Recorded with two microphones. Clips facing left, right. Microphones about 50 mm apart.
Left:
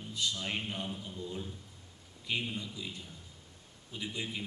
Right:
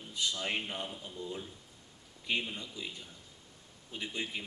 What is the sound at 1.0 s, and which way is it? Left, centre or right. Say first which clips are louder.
Speech: even; centre.